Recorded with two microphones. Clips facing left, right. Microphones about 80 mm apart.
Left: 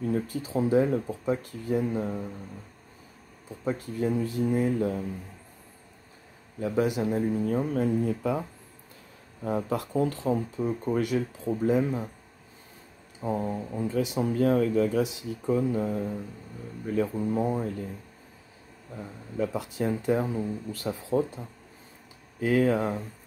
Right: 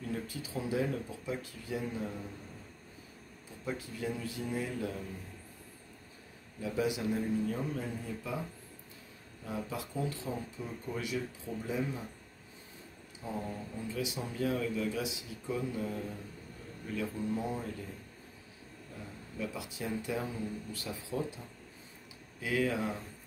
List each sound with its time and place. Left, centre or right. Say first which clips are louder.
0.0 s speech: left 10 dB; left
3.7 s speech: left 9 dB; left
6.6 s speech: left 7 dB; left
9.4 s speech: left 10 dB; left
13.4 s speech: left 9 dB; left
19.3 s speech: left 10 dB; left